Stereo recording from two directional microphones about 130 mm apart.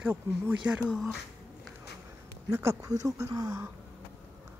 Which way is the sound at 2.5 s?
25° right (ahead or behind).